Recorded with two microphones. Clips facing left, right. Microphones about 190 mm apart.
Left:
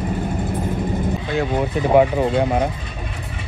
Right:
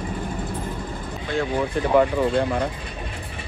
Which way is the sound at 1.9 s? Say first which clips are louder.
Left 3 dB; 55° left (ahead or behind).